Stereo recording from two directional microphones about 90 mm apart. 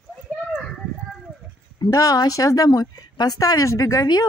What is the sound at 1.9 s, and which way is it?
Speech, 35° left (ahead or behind).